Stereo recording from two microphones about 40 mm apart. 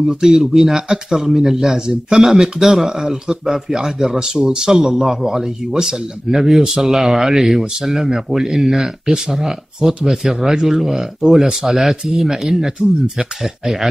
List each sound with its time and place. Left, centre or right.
0.1 s a man's voice: centre
2.2 s a man's voice: centre